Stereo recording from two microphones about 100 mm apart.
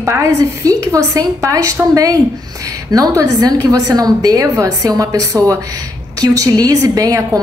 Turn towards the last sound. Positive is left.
turn(degrees=-35)  # may be behind; listen again after turning